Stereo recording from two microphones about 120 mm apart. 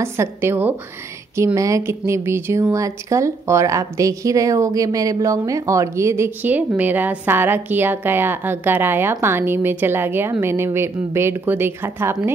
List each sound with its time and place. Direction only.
0.0 s a woman's voice: 20° right (ahead or behind)